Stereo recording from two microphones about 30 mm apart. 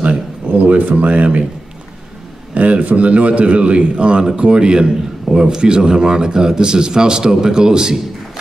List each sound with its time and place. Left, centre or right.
0.5 s speech: right
2.5 s a man's voice: right